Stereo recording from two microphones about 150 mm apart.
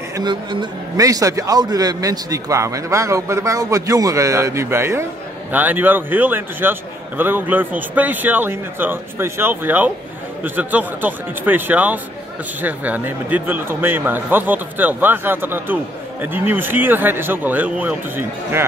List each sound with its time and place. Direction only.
0.2 s a man's voice: 30° right (ahead or behind); by 18.7 s 15° right (ahead or behind)